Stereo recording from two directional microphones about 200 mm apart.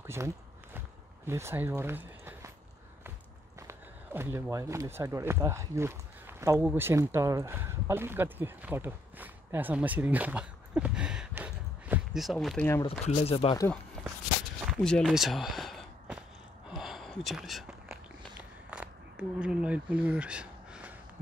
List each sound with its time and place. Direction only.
0.0 s speech: 10° right (ahead or behind)
0.7 s a sound: 10° right (ahead or behind)
3.5 s speech: 15° right (ahead or behind); by 12.8 s 10° left (ahead or behind)
13.0 s speech: 30° left (ahead or behind)
14.7 s walk: 5° left (ahead or behind)
16.6 s gasp: 5° right (ahead or behind)
18.7 s a sound: 5° right (ahead or behind)